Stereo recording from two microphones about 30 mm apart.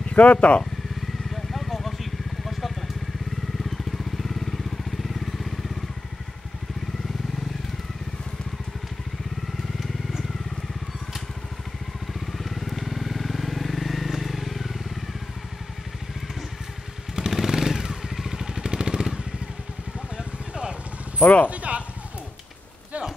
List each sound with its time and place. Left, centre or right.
0.1 s speech: left
1.3 s vehicle: centre
9.8 s vehicle: centre
12.1 s motorcycle: centre
17.5 s vehicle: centre
20.2 s vehicle: right
21.2 s a sound: left
21.5 s a sound: right